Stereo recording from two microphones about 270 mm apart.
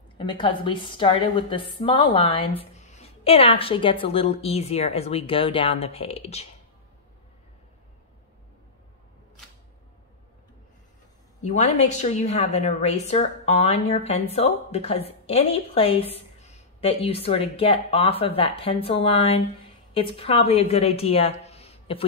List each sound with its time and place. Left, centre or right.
0.2 s a woman's voice: centre
11.4 s a woman's voice: left